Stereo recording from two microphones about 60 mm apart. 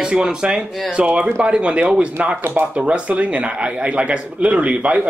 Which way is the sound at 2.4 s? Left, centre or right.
Right.